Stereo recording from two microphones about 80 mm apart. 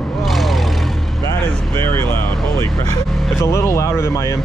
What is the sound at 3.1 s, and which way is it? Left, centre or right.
Vehicle, centre.